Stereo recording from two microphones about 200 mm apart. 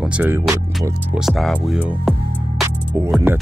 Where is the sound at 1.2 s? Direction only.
Centre (ahead or behind).